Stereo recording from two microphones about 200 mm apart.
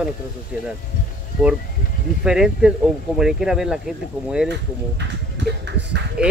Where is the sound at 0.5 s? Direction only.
5° right (ahead or behind).